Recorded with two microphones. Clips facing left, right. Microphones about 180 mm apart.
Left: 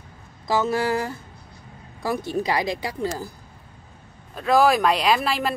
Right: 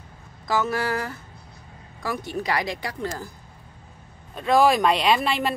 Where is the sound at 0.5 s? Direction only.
25° left (ahead or behind).